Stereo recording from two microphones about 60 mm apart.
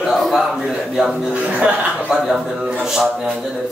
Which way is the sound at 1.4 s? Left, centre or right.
Right.